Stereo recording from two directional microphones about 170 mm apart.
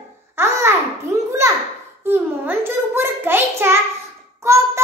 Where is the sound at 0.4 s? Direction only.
15° right (ahead or behind).